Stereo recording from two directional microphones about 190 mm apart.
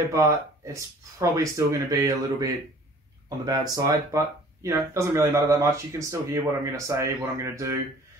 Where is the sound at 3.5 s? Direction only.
15° right (ahead or behind).